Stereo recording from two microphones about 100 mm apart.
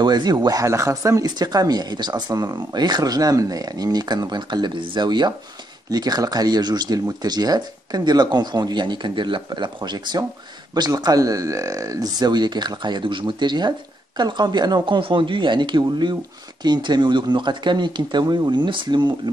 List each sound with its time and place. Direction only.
0.0 s speech: 45° right (ahead or behind)